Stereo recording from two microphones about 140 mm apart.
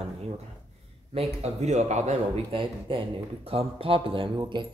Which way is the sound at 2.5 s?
40° right (ahead or behind).